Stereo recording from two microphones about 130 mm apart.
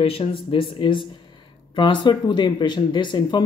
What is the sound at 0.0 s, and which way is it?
Speech, 45° left (ahead or behind).